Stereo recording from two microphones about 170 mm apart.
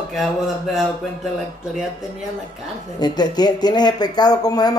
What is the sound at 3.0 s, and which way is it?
Speech, 25° left (ahead or behind).